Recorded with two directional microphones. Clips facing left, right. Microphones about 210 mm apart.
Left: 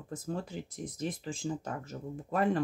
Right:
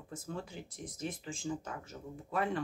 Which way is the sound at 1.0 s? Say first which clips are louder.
Left 4 dB; 35° left (ahead or behind).